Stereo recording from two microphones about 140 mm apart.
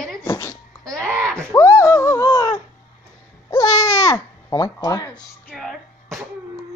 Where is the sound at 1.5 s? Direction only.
20° left (ahead or behind).